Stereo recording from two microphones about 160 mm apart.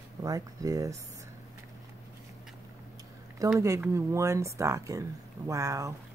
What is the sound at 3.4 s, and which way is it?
Speech, 20° right (ahead or behind).